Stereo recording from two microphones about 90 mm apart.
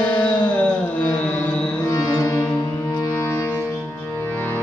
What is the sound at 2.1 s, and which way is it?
Music, 25° left (ahead or behind).